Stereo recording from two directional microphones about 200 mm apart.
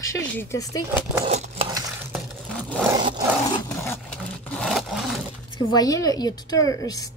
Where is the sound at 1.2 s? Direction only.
35° right (ahead or behind).